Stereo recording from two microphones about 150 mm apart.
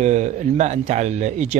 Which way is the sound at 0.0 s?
50° right (ahead or behind).